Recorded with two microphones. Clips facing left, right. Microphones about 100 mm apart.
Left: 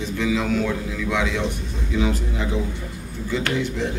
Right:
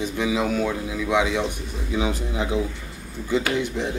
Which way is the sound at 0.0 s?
15° right (ahead or behind).